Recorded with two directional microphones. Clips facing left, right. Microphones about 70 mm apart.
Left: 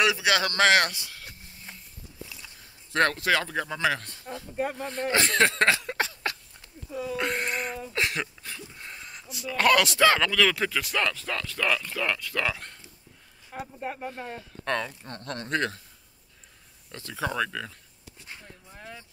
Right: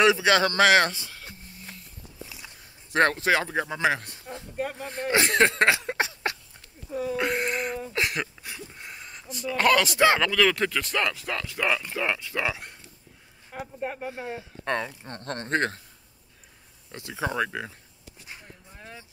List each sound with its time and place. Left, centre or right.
0.0 s speech: right
0.9 s a sound: centre
2.2 s speech: centre
5.6 s a sound: centre
7.2 s speech: centre
8.4 s a sound: centre
9.9 s speech: centre
10.2 s speech: centre
11.1 s speech: centre
15.0 s speech: right
16.9 s speech: centre